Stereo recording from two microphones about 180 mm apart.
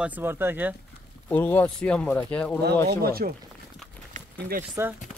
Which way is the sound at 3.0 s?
55° right (ahead or behind).